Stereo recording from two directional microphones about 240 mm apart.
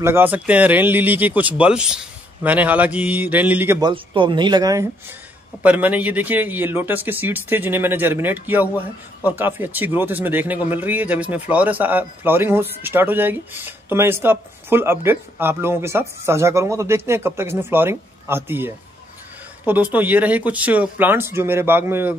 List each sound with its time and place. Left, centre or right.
0.0 s a man's voice: centre
3.9 s a man's voice: right